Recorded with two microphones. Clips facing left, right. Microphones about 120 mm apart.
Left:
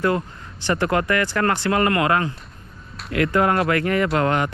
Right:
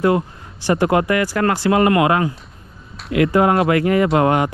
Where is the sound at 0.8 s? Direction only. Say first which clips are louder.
Right 3 dB; 25° right (ahead or behind).